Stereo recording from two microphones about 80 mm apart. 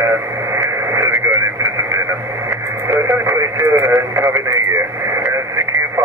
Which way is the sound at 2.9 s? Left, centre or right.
Right.